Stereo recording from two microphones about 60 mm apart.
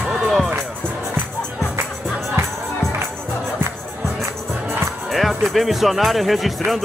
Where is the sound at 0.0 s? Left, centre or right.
Centre.